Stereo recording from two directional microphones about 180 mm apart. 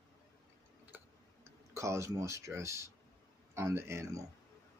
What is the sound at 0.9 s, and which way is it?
Tick-tock, 10° right (ahead or behind).